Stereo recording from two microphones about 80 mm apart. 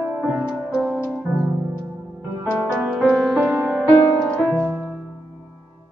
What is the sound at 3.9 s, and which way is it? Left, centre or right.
Music, centre.